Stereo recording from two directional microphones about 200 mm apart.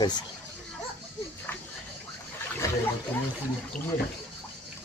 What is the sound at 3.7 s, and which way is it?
Speech, 5° left (ahead or behind).